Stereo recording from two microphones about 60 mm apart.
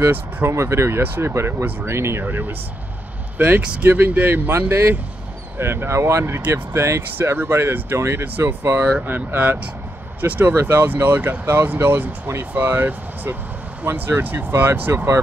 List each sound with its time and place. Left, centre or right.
0.0 s speech: right
0.5 s speech: right
2.2 s speech: right
3.6 s speech: centre
3.9 s speech: right
7.2 s speech: right
11.4 s speech: right
12.5 s speech: right
14.5 s speech: right
14.8 s speech: right